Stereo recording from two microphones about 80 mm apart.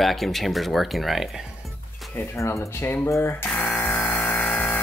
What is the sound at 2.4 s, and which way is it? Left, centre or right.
Speech, left.